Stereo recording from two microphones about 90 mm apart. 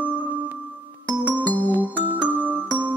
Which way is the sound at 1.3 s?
20° left (ahead or behind).